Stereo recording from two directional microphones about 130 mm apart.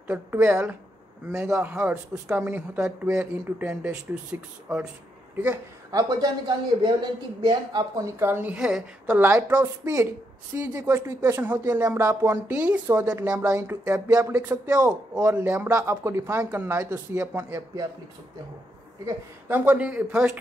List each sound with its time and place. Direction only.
0.0 s speech: 15° right (ahead or behind)
5.9 s speech: 25° right (ahead or behind)
8.2 s speech: 15° right (ahead or behind)
9.5 s speech: 25° right (ahead or behind)
13.0 s speech: 25° right (ahead or behind)
15.3 s speech: 15° right (ahead or behind)
19.0 s speech: 15° right (ahead or behind)